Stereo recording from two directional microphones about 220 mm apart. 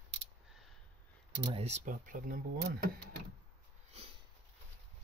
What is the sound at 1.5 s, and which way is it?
Speech, 30° right (ahead or behind).